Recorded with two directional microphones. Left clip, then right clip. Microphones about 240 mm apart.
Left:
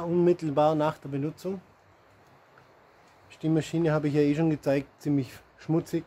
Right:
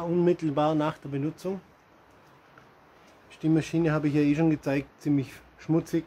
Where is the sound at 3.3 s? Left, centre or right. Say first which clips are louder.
Right 2 dB; centre.